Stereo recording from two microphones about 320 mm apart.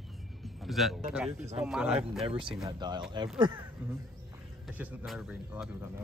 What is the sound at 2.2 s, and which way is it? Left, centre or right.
Speech, centre.